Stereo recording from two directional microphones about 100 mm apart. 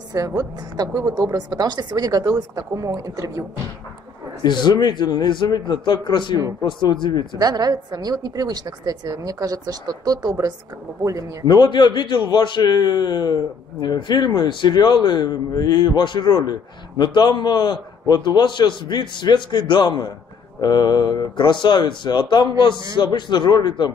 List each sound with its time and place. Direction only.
0.4 s speech: 40° right (ahead or behind)
4.4 s a man's voice: 45° left (ahead or behind)
7.3 s speech: 40° right (ahead or behind)
11.4 s a man's voice: 45° left (ahead or behind)